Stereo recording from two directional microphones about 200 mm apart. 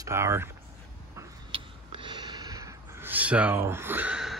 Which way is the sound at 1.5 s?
25° right (ahead or behind).